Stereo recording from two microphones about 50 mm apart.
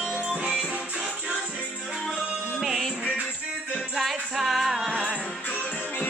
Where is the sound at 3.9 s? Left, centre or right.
Centre.